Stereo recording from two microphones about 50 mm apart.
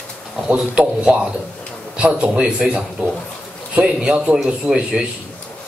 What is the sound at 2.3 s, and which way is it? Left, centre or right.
A man's voice, centre.